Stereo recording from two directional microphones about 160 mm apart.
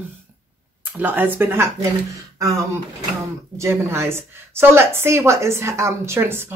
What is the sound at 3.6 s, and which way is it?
A woman's voice, 15° right (ahead or behind).